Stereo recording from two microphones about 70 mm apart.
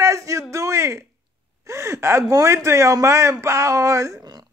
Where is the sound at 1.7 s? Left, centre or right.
Right.